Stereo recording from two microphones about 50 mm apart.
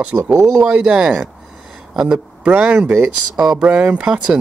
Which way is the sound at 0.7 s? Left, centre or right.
Centre.